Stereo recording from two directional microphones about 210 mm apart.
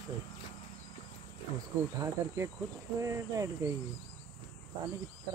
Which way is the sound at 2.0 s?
15° right (ahead or behind).